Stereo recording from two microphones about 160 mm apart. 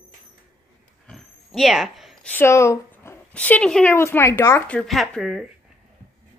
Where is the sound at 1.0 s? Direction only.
Centre (ahead or behind).